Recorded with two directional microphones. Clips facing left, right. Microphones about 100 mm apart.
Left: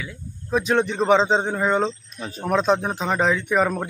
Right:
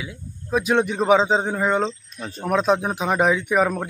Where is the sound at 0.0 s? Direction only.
10° right (ahead or behind).